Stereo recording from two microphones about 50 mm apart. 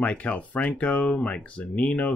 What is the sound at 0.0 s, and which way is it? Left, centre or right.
Speech, left.